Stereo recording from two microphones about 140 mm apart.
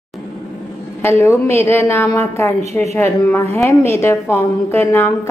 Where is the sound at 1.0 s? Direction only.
20° left (ahead or behind).